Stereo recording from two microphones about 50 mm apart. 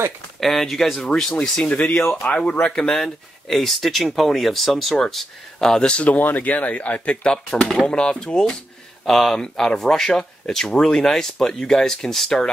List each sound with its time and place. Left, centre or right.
0.4 s speech: centre
1.0 s speech: centre
2.2 s speech: left
6.0 s speech: left
7.6 s speech: centre